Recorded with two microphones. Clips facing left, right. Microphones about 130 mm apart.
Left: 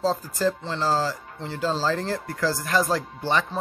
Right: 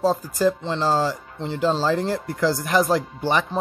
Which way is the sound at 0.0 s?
15° right (ahead or behind).